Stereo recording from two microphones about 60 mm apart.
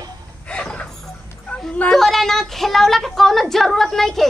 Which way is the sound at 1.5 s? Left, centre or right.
Centre.